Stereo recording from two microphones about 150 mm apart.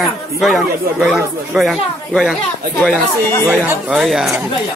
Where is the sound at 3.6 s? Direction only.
5° right (ahead or behind).